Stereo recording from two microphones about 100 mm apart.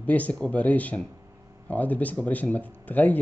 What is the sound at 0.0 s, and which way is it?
Speech, 15° left (ahead or behind).